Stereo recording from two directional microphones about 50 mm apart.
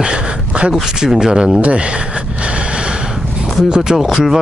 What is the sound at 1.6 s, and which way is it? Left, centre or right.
Speech, right.